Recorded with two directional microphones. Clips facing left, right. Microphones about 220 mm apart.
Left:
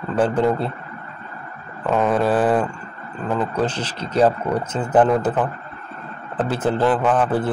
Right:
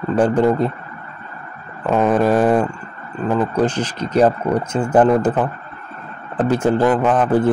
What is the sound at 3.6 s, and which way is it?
A man's voice, 10° right (ahead or behind).